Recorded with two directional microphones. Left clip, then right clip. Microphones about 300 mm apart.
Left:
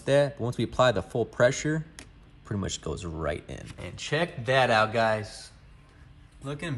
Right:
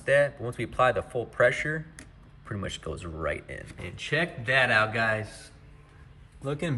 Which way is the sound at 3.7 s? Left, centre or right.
Centre.